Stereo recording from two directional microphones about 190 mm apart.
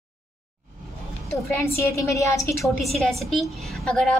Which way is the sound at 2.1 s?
15° left (ahead or behind).